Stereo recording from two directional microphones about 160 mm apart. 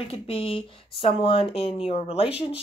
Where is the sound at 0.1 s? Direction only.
35° left (ahead or behind).